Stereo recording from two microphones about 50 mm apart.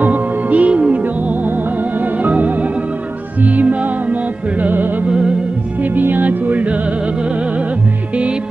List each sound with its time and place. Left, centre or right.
0.0 s music: right